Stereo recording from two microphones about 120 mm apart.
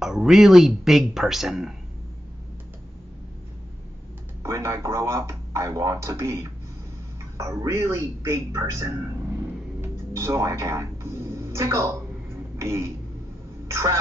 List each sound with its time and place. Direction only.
0.0 s speech: 5° right (ahead or behind)
4.4 s a man's voice: 25° right (ahead or behind)
9.8 s music: 25° right (ahead or behind)
12.5 s throat clearing: 25° right (ahead or behind)
13.7 s speech: 25° right (ahead or behind)